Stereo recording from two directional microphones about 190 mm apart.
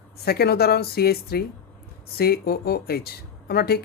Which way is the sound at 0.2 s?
55° left (ahead or behind).